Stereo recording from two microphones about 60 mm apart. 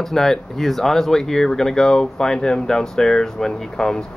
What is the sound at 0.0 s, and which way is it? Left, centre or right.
Speech, centre.